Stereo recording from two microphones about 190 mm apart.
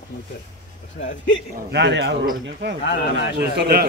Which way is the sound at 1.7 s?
65° right (ahead or behind).